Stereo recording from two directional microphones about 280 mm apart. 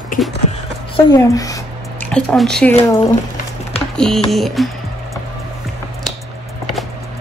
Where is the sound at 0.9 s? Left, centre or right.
Centre.